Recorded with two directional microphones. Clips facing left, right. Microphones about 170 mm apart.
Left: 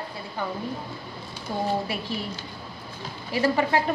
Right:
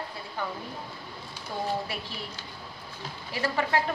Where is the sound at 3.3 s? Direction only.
15° left (ahead or behind).